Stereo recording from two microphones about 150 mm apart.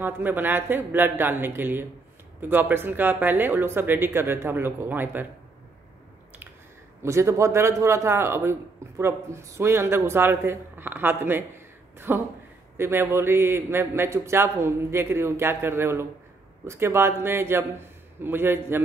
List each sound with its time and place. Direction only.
0.0 s a man's voice: 15° right (ahead or behind)
7.0 s a man's voice: 20° right (ahead or behind)